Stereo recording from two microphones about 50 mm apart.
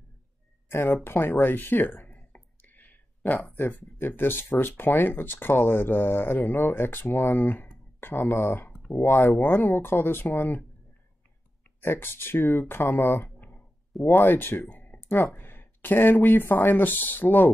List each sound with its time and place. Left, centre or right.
0.7 s speech: left
2.3 s a sound: left
3.5 s speech: left
11.8 s speech: left
14.1 s speech: left
14.8 s a sound: left
15.3 s speech: left